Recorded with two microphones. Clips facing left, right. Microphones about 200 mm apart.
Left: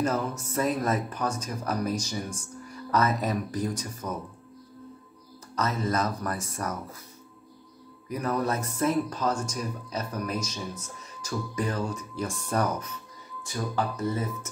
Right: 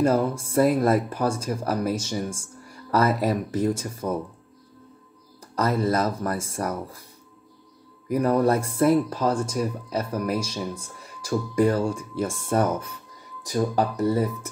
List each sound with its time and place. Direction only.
0.0 s speech: 30° right (ahead or behind)
5.6 s speech: 35° right (ahead or behind)
8.2 s speech: 35° right (ahead or behind)
13.4 s speech: 35° right (ahead or behind)